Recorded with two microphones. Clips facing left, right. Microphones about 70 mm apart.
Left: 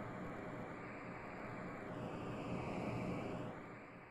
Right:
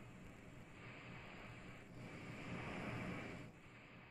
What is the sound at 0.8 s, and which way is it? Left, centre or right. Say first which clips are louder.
Vehicle: left 8 dB; left.